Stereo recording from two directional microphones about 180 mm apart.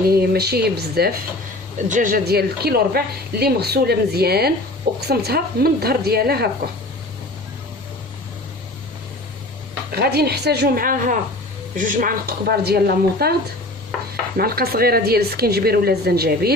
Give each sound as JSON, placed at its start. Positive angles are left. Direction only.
{"t": 0.1, "sound": "a woman's voice", "side_deg": -60}
{"t": 1.9, "sound": "a woman's voice", "side_deg": -45}
{"t": 9.9, "sound": "a woman's voice", "side_deg": -60}
{"t": 14.3, "sound": "a woman's voice", "side_deg": -55}